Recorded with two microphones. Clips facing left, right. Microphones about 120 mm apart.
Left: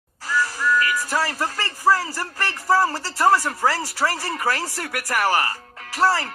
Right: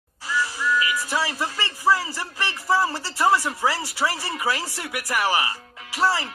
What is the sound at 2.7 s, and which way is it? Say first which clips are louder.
Speech: left 3 dB; 40° left (ahead or behind).